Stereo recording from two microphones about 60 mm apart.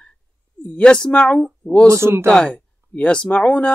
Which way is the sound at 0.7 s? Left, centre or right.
Centre.